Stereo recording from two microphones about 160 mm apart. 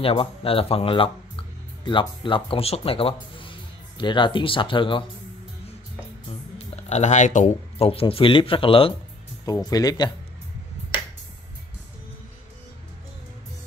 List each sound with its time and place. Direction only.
0.0 s speech: 35° left (ahead or behind)
6.6 s speech: 45° left (ahead or behind)
9.7 s speech: 25° left (ahead or behind)